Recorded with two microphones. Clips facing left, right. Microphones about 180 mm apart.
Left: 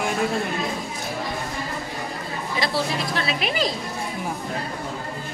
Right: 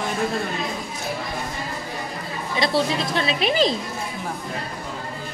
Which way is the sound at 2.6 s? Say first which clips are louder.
Right 4 dB; 25° right (ahead or behind).